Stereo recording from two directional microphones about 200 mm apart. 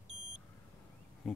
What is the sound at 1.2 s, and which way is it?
Bee, centre (ahead or behind).